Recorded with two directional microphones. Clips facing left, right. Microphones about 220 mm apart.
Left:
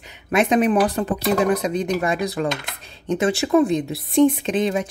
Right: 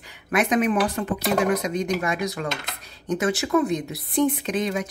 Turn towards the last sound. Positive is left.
turn(degrees=30)  # may be behind; listen again after turning